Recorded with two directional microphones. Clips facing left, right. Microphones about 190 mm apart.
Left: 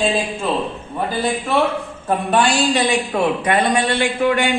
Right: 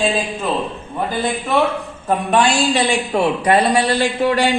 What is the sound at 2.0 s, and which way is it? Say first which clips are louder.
Speech: right 1 dB; centre (ahead or behind).